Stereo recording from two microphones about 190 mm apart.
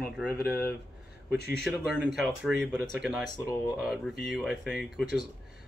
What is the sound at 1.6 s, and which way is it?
Speech, centre (ahead or behind).